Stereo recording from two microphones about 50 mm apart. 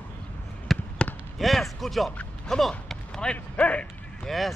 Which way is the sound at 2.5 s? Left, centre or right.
Centre.